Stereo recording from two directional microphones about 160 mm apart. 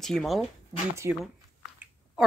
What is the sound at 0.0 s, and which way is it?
Speech, centre (ahead or behind).